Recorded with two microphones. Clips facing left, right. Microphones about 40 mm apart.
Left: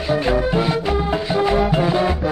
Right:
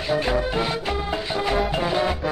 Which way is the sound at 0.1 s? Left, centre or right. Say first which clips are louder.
Left 4 dB; centre.